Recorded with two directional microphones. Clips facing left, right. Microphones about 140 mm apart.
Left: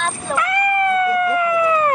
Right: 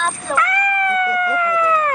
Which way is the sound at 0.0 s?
5° left (ahead or behind).